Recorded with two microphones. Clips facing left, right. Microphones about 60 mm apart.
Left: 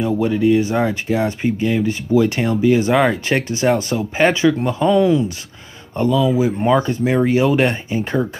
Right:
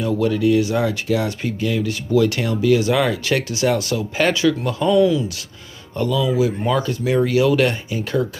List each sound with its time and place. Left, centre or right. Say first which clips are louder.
0.0 s speech: left 2 dB; left